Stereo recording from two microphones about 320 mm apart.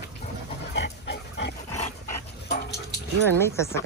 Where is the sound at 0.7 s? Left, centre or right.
Left.